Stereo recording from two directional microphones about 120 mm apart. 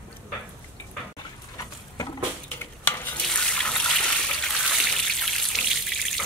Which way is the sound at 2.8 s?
15° left (ahead or behind).